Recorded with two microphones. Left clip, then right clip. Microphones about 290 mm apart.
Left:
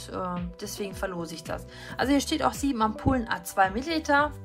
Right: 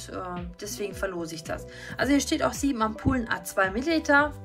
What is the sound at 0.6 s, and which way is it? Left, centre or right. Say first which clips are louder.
Speech: right 5 dB; centre.